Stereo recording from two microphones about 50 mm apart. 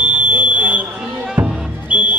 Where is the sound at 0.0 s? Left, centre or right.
Right.